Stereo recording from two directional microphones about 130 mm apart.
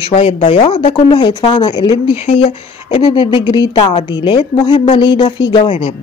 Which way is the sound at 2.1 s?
50° left (ahead or behind).